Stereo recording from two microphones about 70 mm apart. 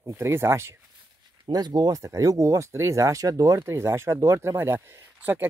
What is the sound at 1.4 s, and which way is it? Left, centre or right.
Speech, right.